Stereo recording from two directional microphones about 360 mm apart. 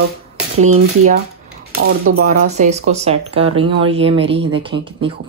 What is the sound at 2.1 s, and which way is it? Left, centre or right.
Speech, right.